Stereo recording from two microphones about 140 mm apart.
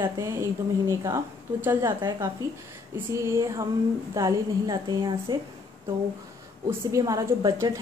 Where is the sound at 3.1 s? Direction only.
20° right (ahead or behind).